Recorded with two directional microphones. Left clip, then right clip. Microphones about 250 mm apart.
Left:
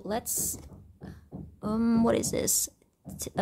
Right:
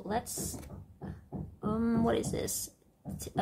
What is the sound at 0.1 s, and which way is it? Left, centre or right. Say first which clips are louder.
Speech: left 2 dB; left.